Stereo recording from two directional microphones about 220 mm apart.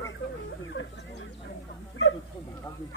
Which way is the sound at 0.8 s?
60° left (ahead or behind).